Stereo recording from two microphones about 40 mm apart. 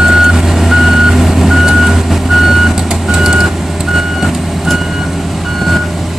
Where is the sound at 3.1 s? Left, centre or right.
Centre.